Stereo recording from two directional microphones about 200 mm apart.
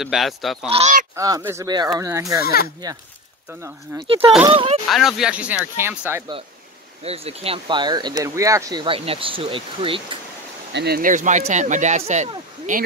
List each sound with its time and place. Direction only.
0.0 s speech: centre (ahead or behind)
0.7 s speech: 30° right (ahead or behind)
1.1 s speech: 15° right (ahead or behind)
2.4 s speech: 50° left (ahead or behind)
3.9 s speech: 15° right (ahead or behind)
4.5 s speech: 25° right (ahead or behind)
4.8 s speech: centre (ahead or behind)
7.0 s speech: 30° right (ahead or behind)
10.7 s speech: 55° right (ahead or behind)